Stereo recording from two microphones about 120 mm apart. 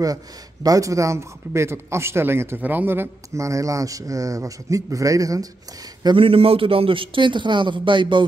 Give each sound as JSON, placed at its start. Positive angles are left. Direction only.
{"t": 0.7, "sound": "speech", "side_deg": -30}
{"t": 6.0, "sound": "a man's voice", "side_deg": -50}